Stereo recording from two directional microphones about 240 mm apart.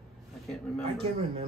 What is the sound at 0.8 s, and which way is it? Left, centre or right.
Speech, right.